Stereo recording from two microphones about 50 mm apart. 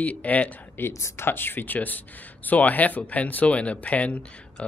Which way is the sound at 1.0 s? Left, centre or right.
Left.